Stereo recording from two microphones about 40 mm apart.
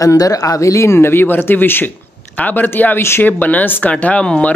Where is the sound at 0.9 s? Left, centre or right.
Left.